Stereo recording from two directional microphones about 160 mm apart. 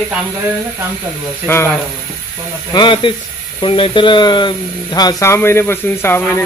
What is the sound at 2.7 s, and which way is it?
Speech, 30° left (ahead or behind).